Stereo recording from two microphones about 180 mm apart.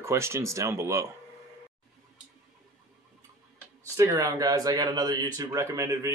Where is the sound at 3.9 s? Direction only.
15° right (ahead or behind).